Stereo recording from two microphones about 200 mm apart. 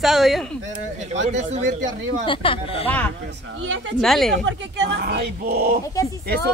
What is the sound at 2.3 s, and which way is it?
Speech, 25° left (ahead or behind).